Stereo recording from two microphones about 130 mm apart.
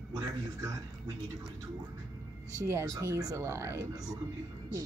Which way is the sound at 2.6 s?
25° right (ahead or behind).